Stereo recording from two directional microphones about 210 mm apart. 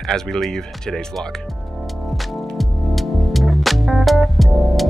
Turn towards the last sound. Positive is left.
turn(degrees=0)  # may be behind; listen again after turning